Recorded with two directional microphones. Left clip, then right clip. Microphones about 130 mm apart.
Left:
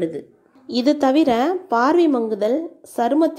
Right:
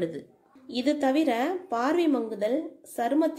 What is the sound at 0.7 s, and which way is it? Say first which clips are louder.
A woman's voice: left 8 dB; 40° left (ahead or behind).